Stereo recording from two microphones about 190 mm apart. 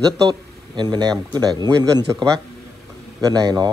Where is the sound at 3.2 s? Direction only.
20° right (ahead or behind).